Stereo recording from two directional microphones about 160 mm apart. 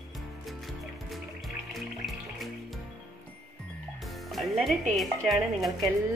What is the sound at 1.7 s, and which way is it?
Music, centre (ahead or behind).